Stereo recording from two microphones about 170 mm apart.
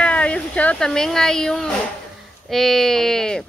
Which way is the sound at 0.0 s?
5° left (ahead or behind).